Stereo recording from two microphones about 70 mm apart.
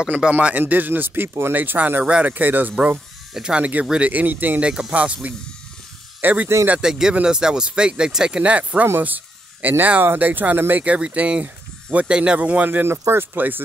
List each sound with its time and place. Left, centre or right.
0.3 s speech: right
3.3 s speech: centre
4.6 s speech: centre
6.7 s speech: centre; by 10.8 s right
10.8 s speech: centre
12.8 s speech: right